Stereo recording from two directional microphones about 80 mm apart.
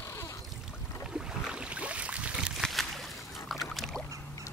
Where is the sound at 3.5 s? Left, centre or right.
Centre.